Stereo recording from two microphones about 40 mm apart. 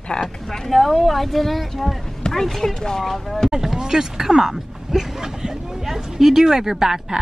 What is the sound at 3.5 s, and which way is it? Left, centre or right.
Speech, centre.